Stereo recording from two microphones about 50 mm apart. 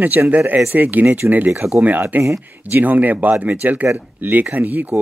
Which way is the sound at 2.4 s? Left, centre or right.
Right.